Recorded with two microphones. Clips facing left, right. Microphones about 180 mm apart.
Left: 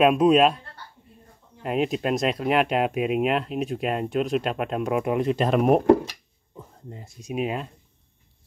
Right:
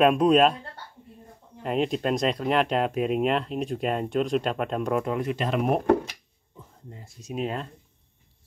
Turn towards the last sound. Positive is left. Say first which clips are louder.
# left 3 dB
turn(degrees=10)  # may be behind; listen again after turning